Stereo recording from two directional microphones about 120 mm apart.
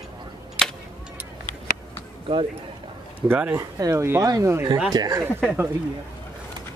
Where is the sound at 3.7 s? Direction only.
35° right (ahead or behind).